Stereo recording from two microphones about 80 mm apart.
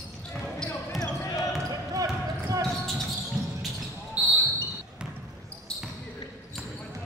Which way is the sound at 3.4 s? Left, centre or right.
Centre.